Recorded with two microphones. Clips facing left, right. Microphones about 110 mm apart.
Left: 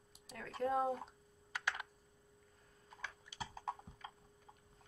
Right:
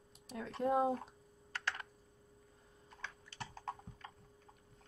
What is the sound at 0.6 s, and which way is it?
Speech, 20° right (ahead or behind).